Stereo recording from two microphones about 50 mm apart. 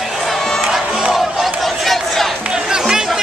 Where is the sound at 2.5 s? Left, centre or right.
Centre.